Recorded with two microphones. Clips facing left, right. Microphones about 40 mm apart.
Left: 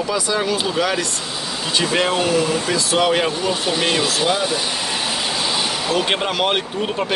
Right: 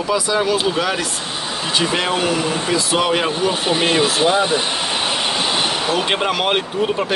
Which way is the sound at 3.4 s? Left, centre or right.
Right.